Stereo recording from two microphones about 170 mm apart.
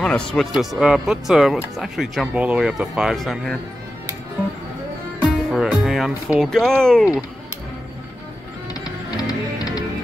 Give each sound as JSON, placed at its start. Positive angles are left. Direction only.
{"t": 0.0, "sound": "speech", "side_deg": 5}
{"t": 5.5, "sound": "speech", "side_deg": 0}
{"t": 8.7, "sound": "music", "side_deg": 20}